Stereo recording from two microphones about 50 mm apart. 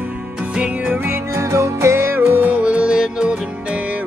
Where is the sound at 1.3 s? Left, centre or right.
Right.